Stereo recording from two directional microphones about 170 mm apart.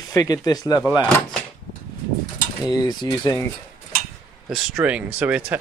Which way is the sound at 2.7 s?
20° left (ahead or behind).